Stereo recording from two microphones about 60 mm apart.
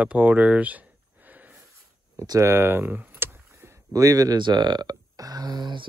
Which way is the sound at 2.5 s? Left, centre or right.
Right.